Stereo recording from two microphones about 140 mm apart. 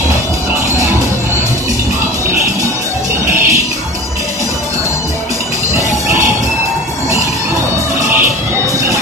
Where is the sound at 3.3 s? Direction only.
20° right (ahead or behind).